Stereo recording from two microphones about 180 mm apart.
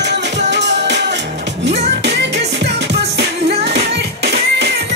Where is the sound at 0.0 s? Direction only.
75° right (ahead or behind).